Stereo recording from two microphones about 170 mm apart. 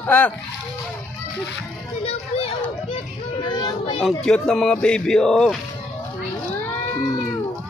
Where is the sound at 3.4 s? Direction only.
25° left (ahead or behind).